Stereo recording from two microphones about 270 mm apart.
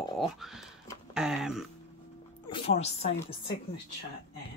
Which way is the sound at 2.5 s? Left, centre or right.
Left.